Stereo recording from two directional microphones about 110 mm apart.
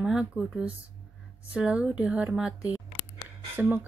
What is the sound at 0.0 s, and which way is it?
Speech, 5° right (ahead or behind).